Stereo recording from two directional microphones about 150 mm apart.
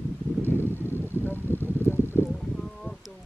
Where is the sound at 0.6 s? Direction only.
15° left (ahead or behind).